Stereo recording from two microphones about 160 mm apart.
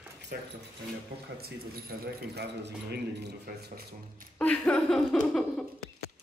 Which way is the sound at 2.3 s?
90° right.